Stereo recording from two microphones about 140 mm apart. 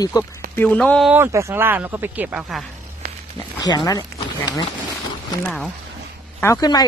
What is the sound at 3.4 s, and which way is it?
Speech, 30° left (ahead or behind).